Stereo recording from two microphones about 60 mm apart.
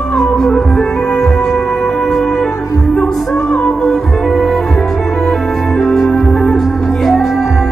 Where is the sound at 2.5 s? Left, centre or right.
Left.